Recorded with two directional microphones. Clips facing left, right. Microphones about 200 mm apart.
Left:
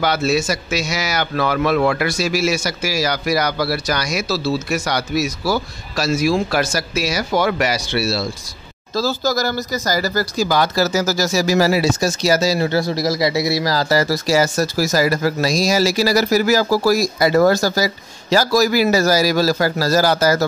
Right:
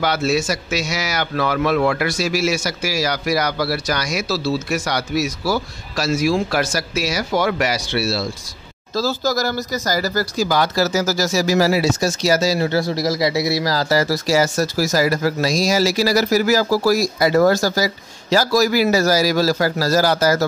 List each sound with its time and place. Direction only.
0.0 s a man's voice: 35° left (ahead or behind)
9.2 s speech: 40° left (ahead or behind)